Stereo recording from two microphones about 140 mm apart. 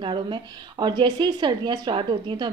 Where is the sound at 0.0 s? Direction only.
35° right (ahead or behind).